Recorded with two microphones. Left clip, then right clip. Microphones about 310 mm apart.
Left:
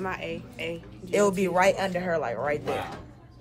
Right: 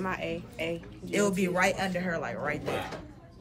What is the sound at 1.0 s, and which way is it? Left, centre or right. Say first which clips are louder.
Speech: left 5 dB; centre.